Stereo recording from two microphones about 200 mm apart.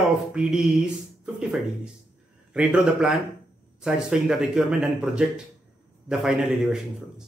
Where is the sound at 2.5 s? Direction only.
5° right (ahead or behind).